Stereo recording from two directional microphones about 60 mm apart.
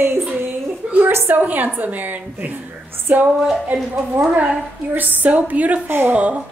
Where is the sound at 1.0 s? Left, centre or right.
Right.